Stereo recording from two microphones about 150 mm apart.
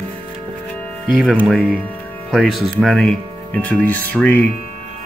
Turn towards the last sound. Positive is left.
turn(degrees=10)  # may be behind; listen again after turning